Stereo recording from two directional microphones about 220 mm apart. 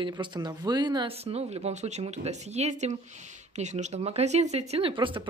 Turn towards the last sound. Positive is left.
turn(degrees=-20)  # may be behind; listen again after turning